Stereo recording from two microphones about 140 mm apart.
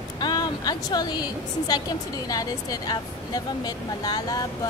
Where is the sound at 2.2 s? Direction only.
25° left (ahead or behind).